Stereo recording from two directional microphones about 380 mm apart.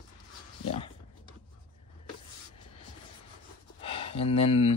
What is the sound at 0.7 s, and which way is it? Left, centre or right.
Dog, centre.